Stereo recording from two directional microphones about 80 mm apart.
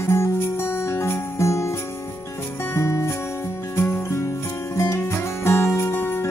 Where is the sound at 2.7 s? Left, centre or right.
Left.